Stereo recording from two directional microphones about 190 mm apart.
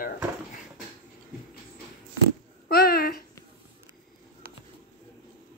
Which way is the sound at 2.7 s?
55° left (ahead or behind).